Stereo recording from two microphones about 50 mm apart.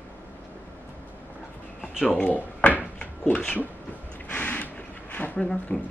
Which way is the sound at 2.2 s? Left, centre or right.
Left.